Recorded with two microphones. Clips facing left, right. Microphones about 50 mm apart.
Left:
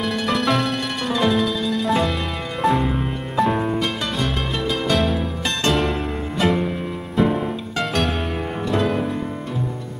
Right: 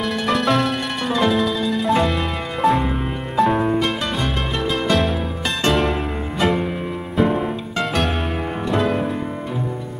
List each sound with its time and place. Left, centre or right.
0.0 s music: centre
8.6 s music: centre